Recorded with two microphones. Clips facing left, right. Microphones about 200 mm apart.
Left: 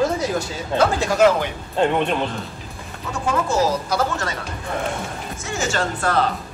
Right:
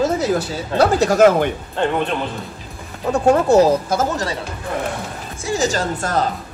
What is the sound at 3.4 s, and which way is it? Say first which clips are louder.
Speech: right 7 dB; 60° right (ahead or behind).